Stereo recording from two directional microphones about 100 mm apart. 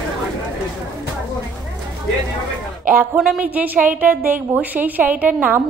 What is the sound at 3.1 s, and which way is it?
A woman's voice, 10° right (ahead or behind).